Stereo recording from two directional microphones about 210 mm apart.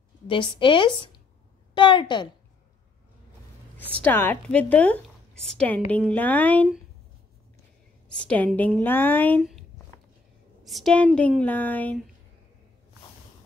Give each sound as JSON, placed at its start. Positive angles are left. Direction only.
{"t": 0.3, "sound": "a woman's voice", "side_deg": 25}
{"t": 3.9, "sound": "a woman's voice", "side_deg": 10}
{"t": 8.2, "sound": "a woman's voice", "side_deg": 5}